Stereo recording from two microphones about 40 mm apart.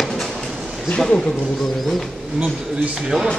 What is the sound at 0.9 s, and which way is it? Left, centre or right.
Speech, centre.